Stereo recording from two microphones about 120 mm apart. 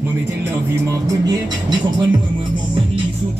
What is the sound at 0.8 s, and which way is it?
Music, 30° right (ahead or behind).